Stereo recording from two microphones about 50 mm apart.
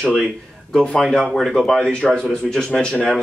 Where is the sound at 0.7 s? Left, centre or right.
Centre.